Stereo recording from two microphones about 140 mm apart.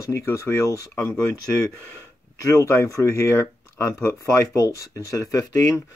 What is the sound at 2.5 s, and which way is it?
Speech, 20° left (ahead or behind).